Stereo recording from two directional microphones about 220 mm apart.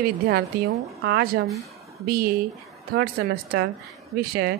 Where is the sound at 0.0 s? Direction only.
45° right (ahead or behind).